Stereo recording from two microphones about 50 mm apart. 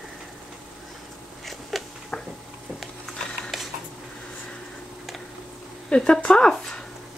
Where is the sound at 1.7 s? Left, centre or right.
Centre.